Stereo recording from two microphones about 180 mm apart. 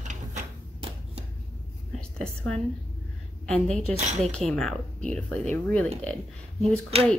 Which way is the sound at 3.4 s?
5° left (ahead or behind).